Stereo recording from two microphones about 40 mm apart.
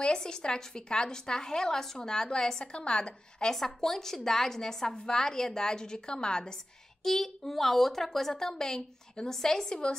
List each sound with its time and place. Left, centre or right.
0.0 s a woman's voice: left
3.5 s a woman's voice: centre
7.0 s a woman's voice: centre